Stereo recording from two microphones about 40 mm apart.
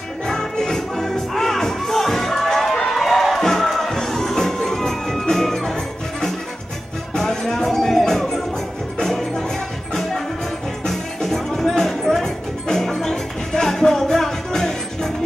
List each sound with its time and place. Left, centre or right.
0.3 s music: centre
7.2 s music: centre
10.9 s music: centre